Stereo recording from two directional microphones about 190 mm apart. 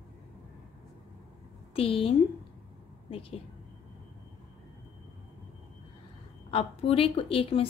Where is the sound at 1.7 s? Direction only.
30° left (ahead or behind).